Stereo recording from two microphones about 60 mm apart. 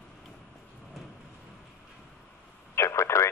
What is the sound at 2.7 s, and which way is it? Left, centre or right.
Radio, left.